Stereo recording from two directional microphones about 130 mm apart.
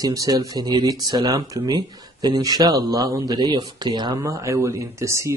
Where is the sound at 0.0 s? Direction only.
30° right (ahead or behind).